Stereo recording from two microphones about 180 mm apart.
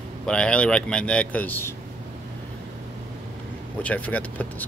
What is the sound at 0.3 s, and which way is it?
Speech, 5° left (ahead or behind).